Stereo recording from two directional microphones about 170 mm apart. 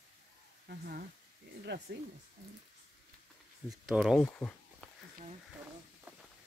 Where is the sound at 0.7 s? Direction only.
60° right (ahead or behind).